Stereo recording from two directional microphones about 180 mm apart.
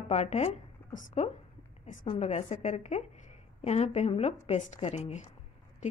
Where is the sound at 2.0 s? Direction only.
35° left (ahead or behind).